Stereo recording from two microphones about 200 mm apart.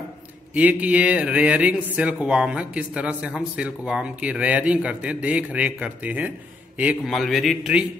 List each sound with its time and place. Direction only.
0.6 s a man's voice: 5° right (ahead or behind)